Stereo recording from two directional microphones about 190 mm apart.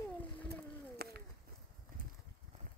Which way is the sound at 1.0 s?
55° right (ahead or behind).